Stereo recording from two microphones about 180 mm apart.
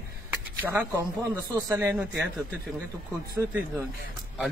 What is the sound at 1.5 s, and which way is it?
Speech, 15° right (ahead or behind).